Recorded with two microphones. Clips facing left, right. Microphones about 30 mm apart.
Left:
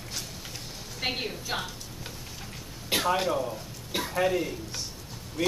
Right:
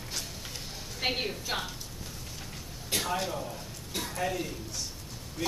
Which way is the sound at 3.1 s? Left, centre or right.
Left.